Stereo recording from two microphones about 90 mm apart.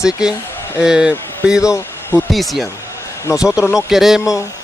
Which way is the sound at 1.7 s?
25° left (ahead or behind).